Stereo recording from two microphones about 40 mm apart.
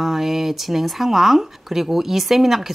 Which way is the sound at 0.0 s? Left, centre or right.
Centre.